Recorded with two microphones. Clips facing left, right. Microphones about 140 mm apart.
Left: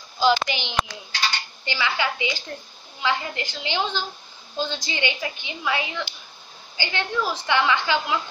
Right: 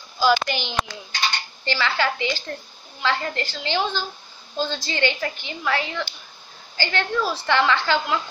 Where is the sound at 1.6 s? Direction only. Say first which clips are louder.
Right 3 dB; 15° left (ahead or behind).